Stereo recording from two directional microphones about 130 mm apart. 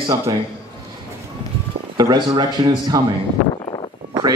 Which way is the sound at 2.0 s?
35° right (ahead or behind).